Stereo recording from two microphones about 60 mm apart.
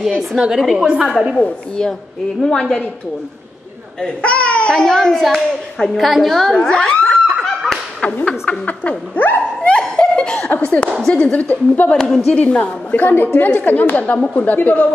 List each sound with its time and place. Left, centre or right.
0.4 s a woman's voice: centre
2.4 s a child's voice: centre
4.0 s a child's voice: centre
7.2 s snicker: centre
8.2 s speech: left
9.7 s snicker: centre
11.0 s speech: centre
11.9 s a child's voice: centre
12.9 s speech: left